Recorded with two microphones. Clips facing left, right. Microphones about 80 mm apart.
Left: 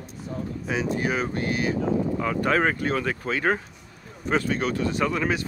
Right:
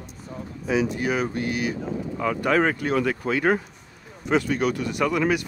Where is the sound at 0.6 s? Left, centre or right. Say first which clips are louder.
Right 3 dB; left.